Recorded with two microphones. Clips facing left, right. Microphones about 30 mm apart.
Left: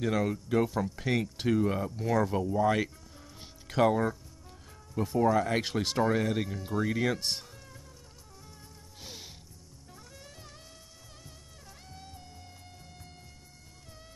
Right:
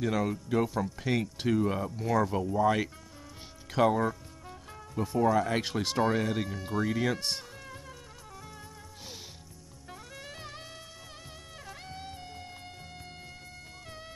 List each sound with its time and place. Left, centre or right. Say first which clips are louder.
0.0 s speech: even; centre
10.2 s music: right 7 dB; right
11.6 s music: right 7 dB; right